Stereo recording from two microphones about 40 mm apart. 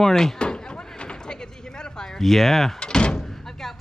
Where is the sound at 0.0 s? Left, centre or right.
Centre.